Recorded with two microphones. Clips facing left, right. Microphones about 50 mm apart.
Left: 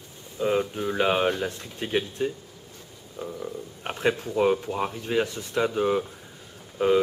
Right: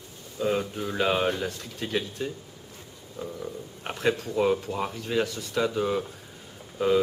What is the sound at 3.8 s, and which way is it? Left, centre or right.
Speech, centre.